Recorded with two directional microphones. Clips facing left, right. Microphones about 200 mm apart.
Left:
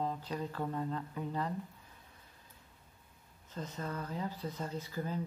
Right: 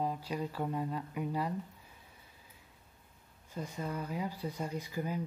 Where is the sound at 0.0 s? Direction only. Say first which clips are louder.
Right 2 dB; 10° right (ahead or behind).